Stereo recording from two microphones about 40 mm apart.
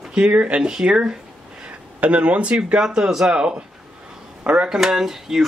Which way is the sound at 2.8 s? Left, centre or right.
Centre.